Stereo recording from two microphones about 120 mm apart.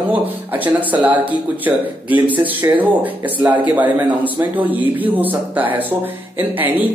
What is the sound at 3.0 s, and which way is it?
Speech, 15° right (ahead or behind).